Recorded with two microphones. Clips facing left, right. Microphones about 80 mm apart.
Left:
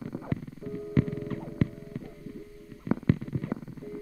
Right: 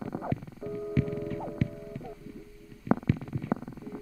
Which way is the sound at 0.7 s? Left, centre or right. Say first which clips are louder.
Left 2 dB; left.